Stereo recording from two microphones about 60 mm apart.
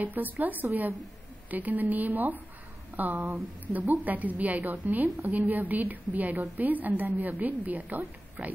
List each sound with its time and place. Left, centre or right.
0.0 s a woman's voice: right